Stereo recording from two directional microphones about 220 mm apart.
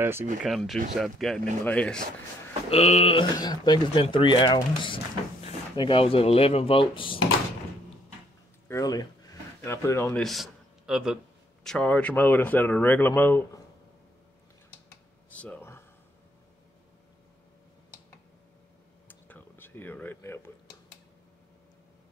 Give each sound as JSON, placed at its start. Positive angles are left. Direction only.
{"t": 0.0, "sound": "speech", "side_deg": -10}
{"t": 0.4, "sound": "speech", "side_deg": 0}
{"t": 2.7, "sound": "speech", "side_deg": 25}
{"t": 8.6, "sound": "speech", "side_deg": 15}
{"t": 10.2, "sound": "a man's voice", "side_deg": 0}
{"t": 15.2, "sound": "a sound", "side_deg": 5}
{"t": 19.0, "sound": "a sound", "side_deg": 10}